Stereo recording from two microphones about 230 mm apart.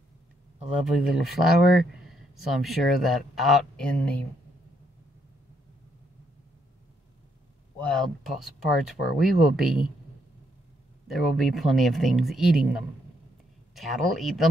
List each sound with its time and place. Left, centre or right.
0.9 s speech: centre
7.8 s speech: centre
11.1 s speech: centre